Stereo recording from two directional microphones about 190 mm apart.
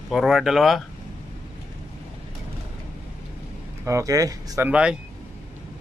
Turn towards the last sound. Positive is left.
turn(degrees=-5)  # may be behind; listen again after turning